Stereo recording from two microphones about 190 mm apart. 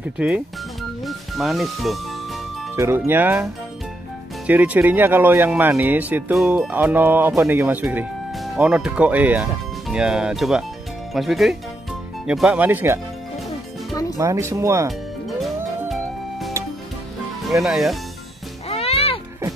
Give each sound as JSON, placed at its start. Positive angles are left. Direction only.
{"t": 0.2, "sound": "speech", "side_deg": -5}
{"t": 2.7, "sound": "speech", "side_deg": -10}
{"t": 4.5, "sound": "speech", "side_deg": -10}
{"t": 14.1, "sound": "speech", "side_deg": -15}
{"t": 14.9, "sound": "music", "side_deg": 0}
{"t": 17.6, "sound": "speech", "side_deg": 0}
{"t": 18.7, "sound": "music", "side_deg": 30}